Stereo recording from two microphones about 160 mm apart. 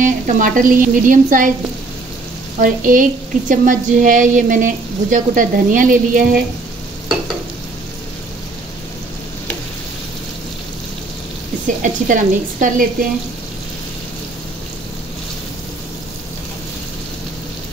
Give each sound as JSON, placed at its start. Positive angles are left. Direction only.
{"t": 0.0, "sound": "a woman's voice", "side_deg": -55}
{"t": 2.6, "sound": "a woman's voice", "side_deg": -55}
{"t": 11.6, "sound": "a woman's voice", "side_deg": -55}